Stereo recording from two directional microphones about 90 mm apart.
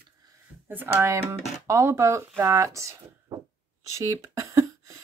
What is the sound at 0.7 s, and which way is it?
Speech, 25° right (ahead or behind).